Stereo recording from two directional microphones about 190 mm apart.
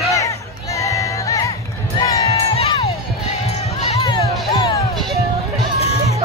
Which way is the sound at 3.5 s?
35° left (ahead or behind).